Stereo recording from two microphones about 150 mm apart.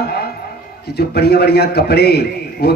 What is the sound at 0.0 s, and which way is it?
Music, 90° left.